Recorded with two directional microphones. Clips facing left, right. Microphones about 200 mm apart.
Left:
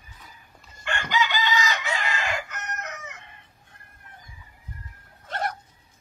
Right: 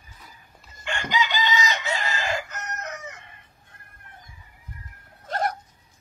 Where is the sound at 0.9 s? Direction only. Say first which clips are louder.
Even; 15° right (ahead or behind).